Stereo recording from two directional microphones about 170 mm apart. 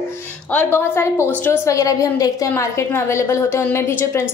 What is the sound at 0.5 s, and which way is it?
A woman's voice, 10° left (ahead or behind).